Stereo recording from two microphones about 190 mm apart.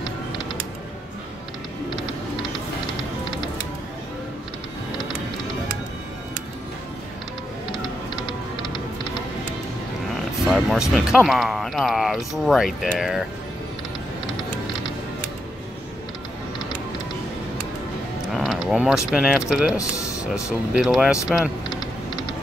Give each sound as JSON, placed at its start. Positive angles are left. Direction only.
{"t": 0.0, "sound": "music", "side_deg": 25}
{"t": 8.2, "sound": "typing", "side_deg": 25}
{"t": 10.4, "sound": "speech", "side_deg": 0}
{"t": 18.3, "sound": "speech", "side_deg": 0}
{"t": 19.8, "sound": "speech", "side_deg": 15}
{"t": 20.7, "sound": "speech", "side_deg": -5}
{"t": 21.6, "sound": "typing", "side_deg": 25}